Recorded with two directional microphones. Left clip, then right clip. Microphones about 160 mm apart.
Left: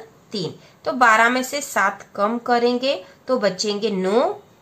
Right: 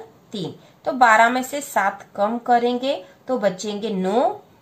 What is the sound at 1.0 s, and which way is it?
A woman's voice, 35° left (ahead or behind).